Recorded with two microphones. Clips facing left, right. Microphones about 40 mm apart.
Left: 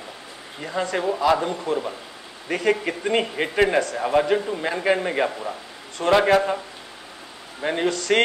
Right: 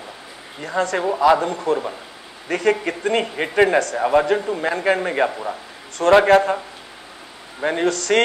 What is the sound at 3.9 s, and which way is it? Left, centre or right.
Speech, centre.